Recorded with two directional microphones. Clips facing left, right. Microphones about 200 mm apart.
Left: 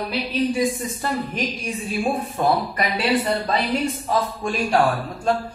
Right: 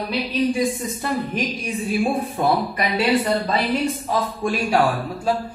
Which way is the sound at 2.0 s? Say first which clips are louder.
Left 1 dB; 5° right (ahead or behind).